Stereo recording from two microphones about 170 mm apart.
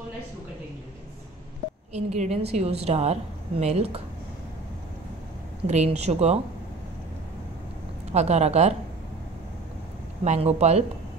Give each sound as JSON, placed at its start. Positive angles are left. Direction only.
{"t": 2.0, "sound": "a woman's voice", "side_deg": -40}
{"t": 5.7, "sound": "a woman's voice", "side_deg": -40}
{"t": 8.1, "sound": "a woman's voice", "side_deg": -40}
{"t": 10.2, "sound": "a woman's voice", "side_deg": -40}